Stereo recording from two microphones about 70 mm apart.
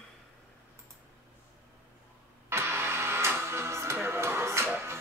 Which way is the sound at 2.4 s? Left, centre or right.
Right.